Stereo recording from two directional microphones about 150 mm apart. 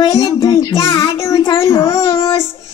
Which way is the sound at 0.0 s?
30° left (ahead or behind).